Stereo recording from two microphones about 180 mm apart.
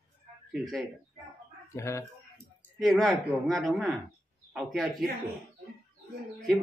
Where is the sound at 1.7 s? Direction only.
15° left (ahead or behind).